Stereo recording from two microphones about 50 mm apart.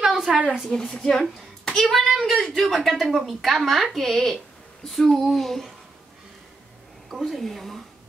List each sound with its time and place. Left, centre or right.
0.0 s a sound: centre
0.3 s a woman's voice: right
0.7 s a woman's voice: centre
7.1 s a child's voice: centre